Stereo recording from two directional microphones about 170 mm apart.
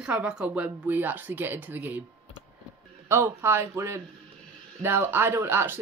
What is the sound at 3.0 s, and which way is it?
Speech, 15° right (ahead or behind).